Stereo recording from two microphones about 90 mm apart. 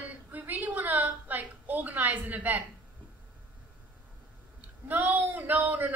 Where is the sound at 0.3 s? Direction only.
20° right (ahead or behind).